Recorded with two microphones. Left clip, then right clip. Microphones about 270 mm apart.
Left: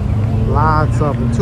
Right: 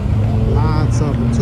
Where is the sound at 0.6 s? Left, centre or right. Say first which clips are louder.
Left 6 dB; centre.